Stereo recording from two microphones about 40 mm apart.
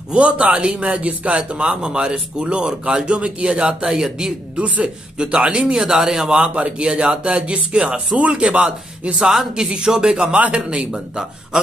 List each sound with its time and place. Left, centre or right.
0.1 s speech: right
3.8 s speech: centre
4.6 s speech: right
4.8 s speech: right
6.5 s speech: right
9.2 s speech: centre; by 10.9 s right
10.9 s speech: centre